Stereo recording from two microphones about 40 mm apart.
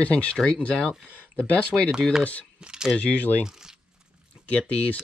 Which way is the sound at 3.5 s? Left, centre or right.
Centre.